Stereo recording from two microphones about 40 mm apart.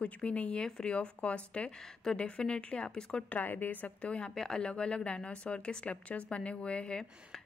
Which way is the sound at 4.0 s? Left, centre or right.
Left.